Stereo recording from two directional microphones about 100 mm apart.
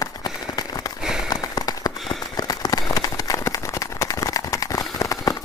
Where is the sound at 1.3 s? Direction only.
40° left (ahead or behind).